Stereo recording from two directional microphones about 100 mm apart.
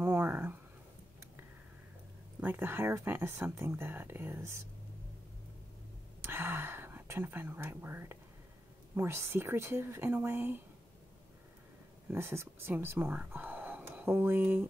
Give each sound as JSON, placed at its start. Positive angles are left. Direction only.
{"t": 0.0, "sound": "a sound", "side_deg": -20}
{"t": 2.4, "sound": "speech", "side_deg": -20}
{"t": 6.2, "sound": "whispering", "side_deg": -20}
{"t": 8.9, "sound": "speech", "side_deg": -25}
{"t": 12.1, "sound": "speech", "side_deg": -25}
{"t": 13.0, "sound": "speech", "side_deg": -10}
{"t": 13.3, "sound": "whispering", "side_deg": -15}
{"t": 13.8, "sound": "speech", "side_deg": -25}